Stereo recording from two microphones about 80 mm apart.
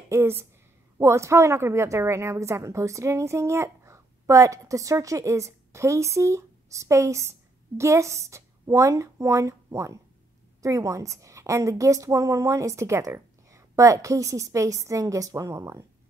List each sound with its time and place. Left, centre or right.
0.1 s a woman's voice: right